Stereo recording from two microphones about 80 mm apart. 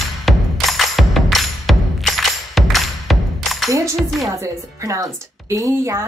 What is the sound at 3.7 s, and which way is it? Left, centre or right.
Speech, right.